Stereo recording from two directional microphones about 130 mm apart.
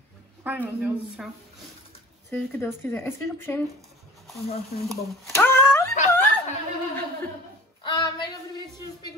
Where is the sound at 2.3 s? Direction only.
15° left (ahead or behind).